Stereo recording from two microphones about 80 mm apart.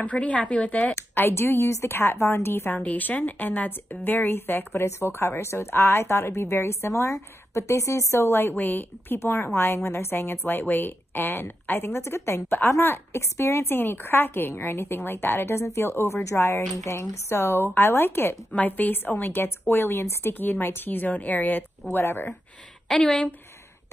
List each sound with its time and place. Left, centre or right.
0.0 s speech: centre
0.9 s a woman's voice: left
22.8 s speech: centre